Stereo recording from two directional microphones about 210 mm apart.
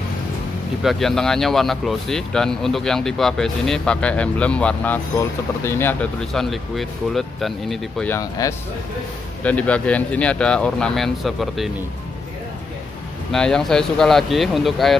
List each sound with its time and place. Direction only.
0.8 s speech: centre (ahead or behind)
8.2 s speech: 15° left (ahead or behind); by 11.7 s centre (ahead or behind)
13.3 s speech: 5° left (ahead or behind)